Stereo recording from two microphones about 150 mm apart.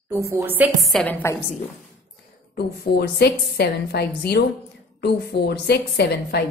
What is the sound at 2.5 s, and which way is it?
A woman's voice, 90° left.